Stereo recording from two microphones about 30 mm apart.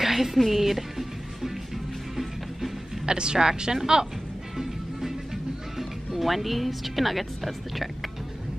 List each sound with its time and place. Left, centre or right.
0.0 s music: centre
0.4 s speech: centre
3.1 s speech: right
4.6 s music: centre